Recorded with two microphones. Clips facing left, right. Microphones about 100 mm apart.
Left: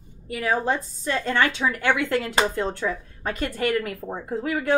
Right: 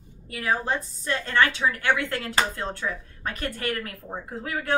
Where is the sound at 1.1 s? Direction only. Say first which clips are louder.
Left 1 dB; 20° left (ahead or behind).